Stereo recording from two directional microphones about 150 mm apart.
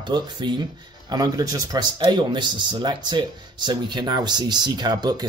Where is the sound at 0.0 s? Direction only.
30° right (ahead or behind).